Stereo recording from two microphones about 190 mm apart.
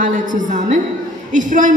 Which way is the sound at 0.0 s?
40° right (ahead or behind).